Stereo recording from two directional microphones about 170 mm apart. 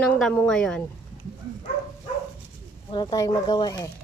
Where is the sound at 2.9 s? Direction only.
25° left (ahead or behind).